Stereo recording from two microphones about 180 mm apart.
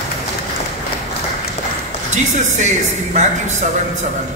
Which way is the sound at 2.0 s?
40° right (ahead or behind).